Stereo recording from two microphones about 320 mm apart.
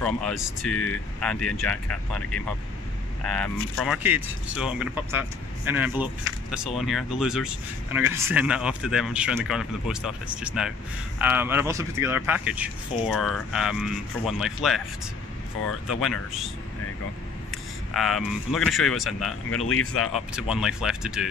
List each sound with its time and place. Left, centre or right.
0.0 s speech: centre
15.9 s speech: centre
17.9 s speech: centre
19.7 s speech: left
20.1 s speech: centre